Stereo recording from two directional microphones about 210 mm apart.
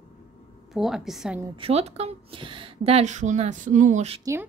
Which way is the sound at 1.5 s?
30° right (ahead or behind).